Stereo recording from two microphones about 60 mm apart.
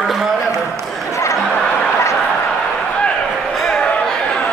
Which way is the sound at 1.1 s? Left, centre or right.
Left.